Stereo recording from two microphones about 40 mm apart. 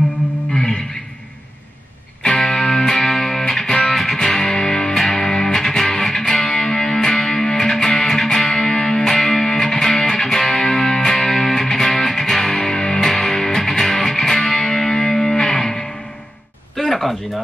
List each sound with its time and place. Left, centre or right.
0.5 s guitar: centre
2.6 s music: centre
16.7 s a sound: centre